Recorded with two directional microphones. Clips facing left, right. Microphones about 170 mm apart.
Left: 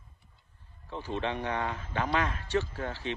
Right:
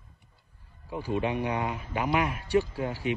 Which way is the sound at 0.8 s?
10° right (ahead or behind).